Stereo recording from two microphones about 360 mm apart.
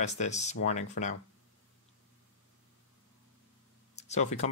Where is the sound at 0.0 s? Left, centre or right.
Centre.